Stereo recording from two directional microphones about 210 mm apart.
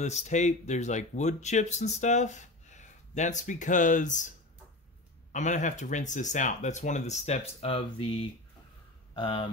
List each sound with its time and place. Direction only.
0.0 s speech: 35° left (ahead or behind)
5.3 s speech: 35° left (ahead or behind)